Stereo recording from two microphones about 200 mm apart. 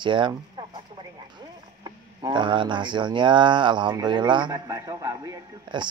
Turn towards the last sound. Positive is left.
turn(degrees=-20)  # may be behind; listen again after turning